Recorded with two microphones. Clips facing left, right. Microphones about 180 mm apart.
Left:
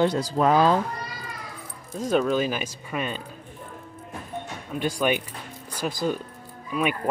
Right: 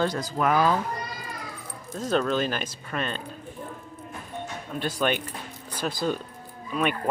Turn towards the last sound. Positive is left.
turn(degrees=5)  # may be behind; listen again after turning